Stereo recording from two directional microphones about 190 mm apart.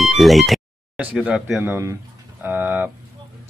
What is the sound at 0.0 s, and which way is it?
Speech, centre (ahead or behind).